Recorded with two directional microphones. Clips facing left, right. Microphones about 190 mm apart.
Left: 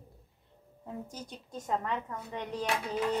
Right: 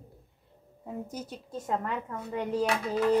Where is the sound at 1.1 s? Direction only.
5° right (ahead or behind).